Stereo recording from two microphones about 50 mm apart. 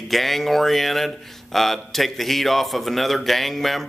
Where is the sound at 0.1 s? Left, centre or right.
Centre.